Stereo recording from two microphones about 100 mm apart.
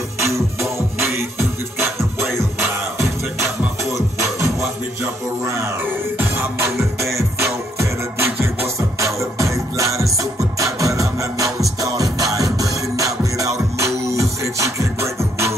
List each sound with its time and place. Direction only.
0.2 s music: 30° right (ahead or behind)
6.1 s music: 20° right (ahead or behind)
7.8 s music: 25° right (ahead or behind)